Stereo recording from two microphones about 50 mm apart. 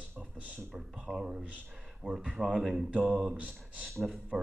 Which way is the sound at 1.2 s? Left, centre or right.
Centre.